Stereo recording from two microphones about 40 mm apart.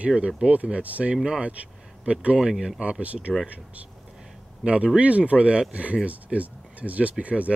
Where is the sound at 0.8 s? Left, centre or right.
Right.